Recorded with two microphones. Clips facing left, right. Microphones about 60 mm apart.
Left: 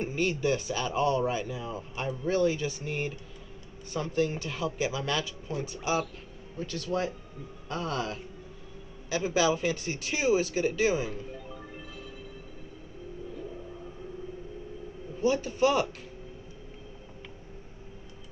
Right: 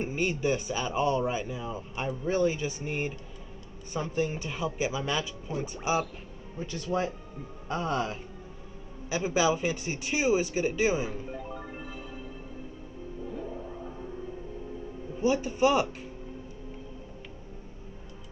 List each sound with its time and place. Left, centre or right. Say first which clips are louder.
0.0 s speech: even; centre
11.3 s music: right 4 dB; right
15.1 s speech: even; centre